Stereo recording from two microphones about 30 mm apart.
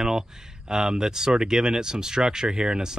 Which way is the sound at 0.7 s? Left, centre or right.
Right.